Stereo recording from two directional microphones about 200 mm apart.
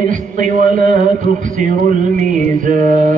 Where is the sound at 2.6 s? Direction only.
40° right (ahead or behind).